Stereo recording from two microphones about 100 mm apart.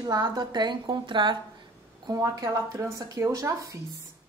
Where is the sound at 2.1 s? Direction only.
35° right (ahead or behind).